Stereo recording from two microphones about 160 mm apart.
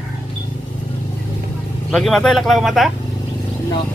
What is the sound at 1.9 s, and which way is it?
Speech, centre (ahead or behind).